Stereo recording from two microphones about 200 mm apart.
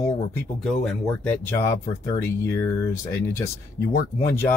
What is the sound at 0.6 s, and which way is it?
Speech, centre (ahead or behind).